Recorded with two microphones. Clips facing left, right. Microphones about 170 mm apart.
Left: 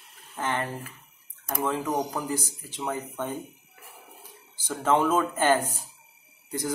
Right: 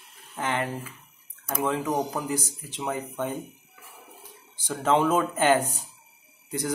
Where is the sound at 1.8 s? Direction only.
5° right (ahead or behind).